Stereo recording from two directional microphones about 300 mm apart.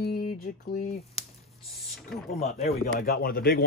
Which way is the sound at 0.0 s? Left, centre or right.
Left.